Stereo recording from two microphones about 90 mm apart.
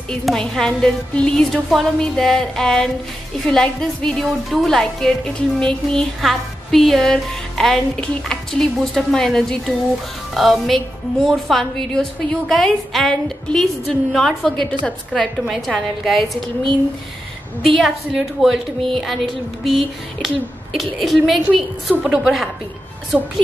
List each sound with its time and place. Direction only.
0.1 s a woman's voice: 5° left (ahead or behind)
17.6 s a woman's voice: centre (ahead or behind)